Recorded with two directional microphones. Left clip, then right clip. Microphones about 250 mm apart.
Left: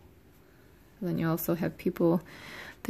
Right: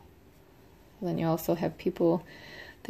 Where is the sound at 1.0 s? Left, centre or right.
Left.